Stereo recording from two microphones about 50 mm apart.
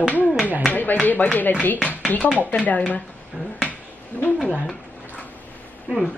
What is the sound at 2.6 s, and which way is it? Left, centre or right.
Female singing, left.